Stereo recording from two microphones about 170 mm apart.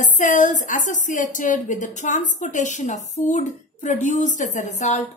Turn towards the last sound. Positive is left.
turn(degrees=45)  # may be behind; listen again after turning